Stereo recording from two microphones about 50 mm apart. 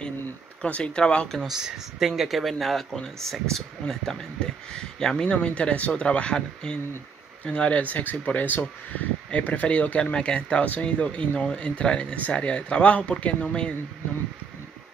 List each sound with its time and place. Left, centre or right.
0.6 s speech: left
1.4 s speech: centre; by 10.1 s left
10.1 s speech: centre